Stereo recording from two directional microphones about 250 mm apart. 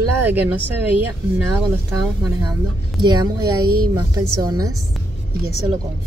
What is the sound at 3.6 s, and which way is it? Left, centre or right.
Speech, right.